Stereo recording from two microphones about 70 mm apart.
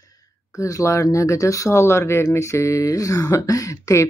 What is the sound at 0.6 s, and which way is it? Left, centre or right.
Speech, left.